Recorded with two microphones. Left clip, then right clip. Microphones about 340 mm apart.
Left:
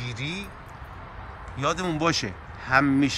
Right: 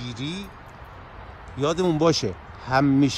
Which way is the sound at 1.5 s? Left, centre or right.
Centre.